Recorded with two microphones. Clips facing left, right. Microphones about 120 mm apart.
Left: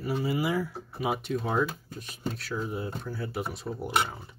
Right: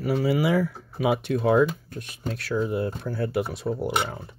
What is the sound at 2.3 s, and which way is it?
Speech, 65° right (ahead or behind).